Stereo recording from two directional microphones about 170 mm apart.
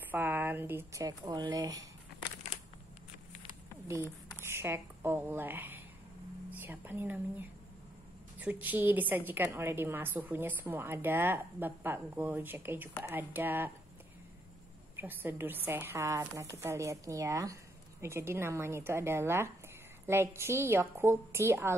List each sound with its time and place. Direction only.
0.1 s a woman's voice: 10° right (ahead or behind)
3.8 s a woman's voice: 15° right (ahead or behind)
15.0 s a woman's voice: 10° right (ahead or behind)